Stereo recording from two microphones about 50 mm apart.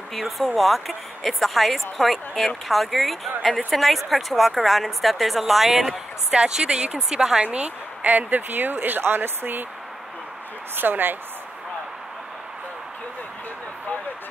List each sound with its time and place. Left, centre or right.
0.1 s a woman's voice: centre
7.4 s speech: right
10.8 s speech: right